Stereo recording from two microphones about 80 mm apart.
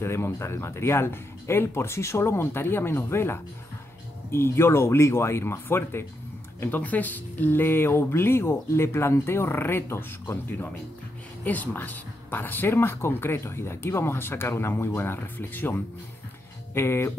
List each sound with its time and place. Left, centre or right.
0.0 s speech: left